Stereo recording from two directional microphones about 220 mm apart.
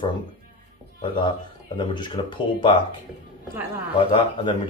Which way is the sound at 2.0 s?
20° left (ahead or behind).